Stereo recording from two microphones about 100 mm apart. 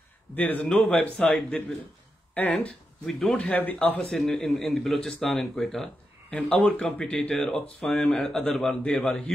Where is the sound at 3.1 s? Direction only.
Centre (ahead or behind).